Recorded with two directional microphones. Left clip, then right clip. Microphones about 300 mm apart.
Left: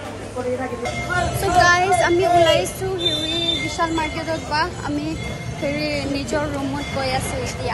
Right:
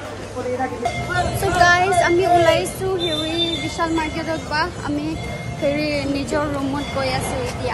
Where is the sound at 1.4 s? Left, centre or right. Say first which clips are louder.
Even; centre.